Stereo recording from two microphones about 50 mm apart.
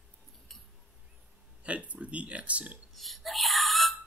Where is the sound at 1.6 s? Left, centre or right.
Right.